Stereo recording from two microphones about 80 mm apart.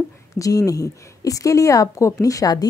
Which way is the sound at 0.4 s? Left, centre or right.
Left.